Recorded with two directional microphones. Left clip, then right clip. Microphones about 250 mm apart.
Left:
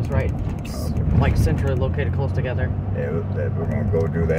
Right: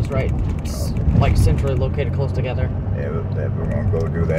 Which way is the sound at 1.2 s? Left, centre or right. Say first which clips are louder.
Right 2 dB; right.